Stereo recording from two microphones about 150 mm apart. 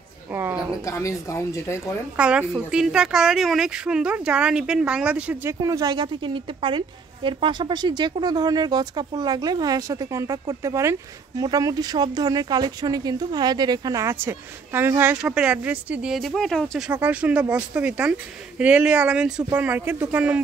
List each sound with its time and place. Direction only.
0.3 s a sound: 15° right (ahead or behind)
0.8 s speech: 20° left (ahead or behind)
2.1 s a woman's voice: 5° right (ahead or behind)